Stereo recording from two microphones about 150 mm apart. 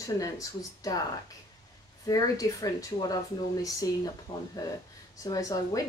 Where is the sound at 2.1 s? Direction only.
25° left (ahead or behind).